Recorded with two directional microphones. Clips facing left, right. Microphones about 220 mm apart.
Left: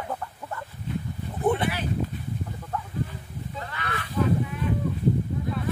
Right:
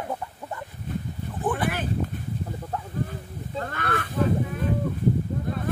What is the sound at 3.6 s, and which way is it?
Honk, 50° right (ahead or behind).